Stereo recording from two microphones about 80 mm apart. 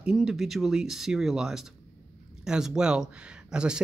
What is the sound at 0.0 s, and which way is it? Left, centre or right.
Speech, centre.